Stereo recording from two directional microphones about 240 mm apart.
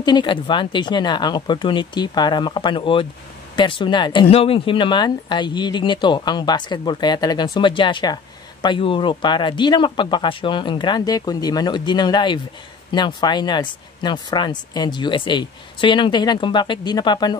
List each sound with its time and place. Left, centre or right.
0.0 s speech: centre